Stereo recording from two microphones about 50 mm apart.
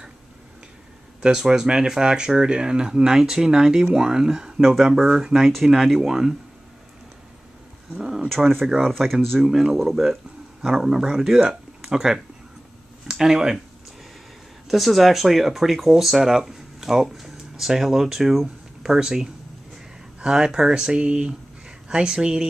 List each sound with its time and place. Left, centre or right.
1.2 s speech: centre
8.0 s a sound: centre
8.3 s speech: centre
9.4 s speech: centre
14.7 s speech: centre